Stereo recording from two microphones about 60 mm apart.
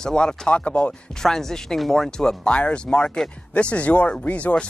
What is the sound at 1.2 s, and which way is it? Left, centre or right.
Speech, centre.